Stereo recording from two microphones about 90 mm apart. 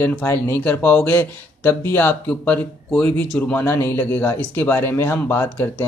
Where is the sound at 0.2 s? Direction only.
25° left (ahead or behind).